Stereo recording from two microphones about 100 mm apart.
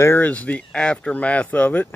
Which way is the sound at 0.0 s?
20° left (ahead or behind).